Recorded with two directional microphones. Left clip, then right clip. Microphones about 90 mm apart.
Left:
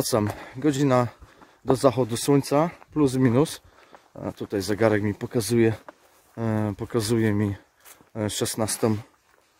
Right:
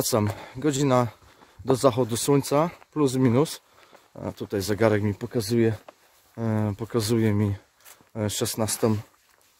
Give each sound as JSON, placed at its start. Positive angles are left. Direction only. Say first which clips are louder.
{"t": 0.0, "sound": "speech", "louder": "left 1 dB", "side_deg": -30}
{"t": 4.1, "sound": "speech", "louder": "left 1 dB", "side_deg": -35}
{"t": 5.2, "sound": "speech", "louder": "left 2 dB", "side_deg": -5}
{"t": 6.3, "sound": "speech", "louder": "left 1 dB", "side_deg": -20}
{"t": 6.6, "sound": "speech", "louder": "left 1 dB", "side_deg": -35}